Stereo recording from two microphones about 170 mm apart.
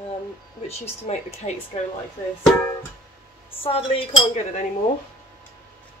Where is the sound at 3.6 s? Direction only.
35° left (ahead or behind).